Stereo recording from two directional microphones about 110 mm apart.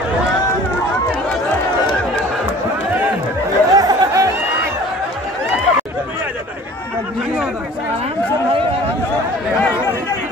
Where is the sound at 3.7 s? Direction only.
35° right (ahead or behind).